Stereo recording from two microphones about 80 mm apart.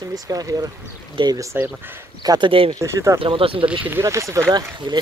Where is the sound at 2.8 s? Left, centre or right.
Right.